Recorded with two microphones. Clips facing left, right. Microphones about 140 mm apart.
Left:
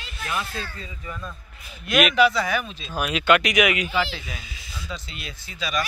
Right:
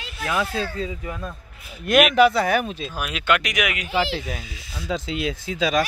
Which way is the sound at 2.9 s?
Centre (ahead or behind).